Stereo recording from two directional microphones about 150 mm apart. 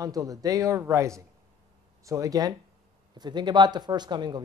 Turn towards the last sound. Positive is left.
turn(degrees=-30)  # may be behind; listen again after turning